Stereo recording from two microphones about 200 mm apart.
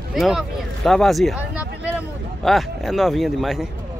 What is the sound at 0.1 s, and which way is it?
Speech, centre (ahead or behind).